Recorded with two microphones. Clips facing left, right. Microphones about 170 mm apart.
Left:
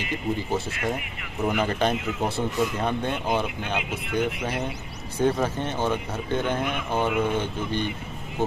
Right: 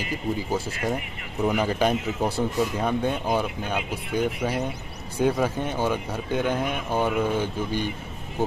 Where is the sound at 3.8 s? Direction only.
40° right (ahead or behind).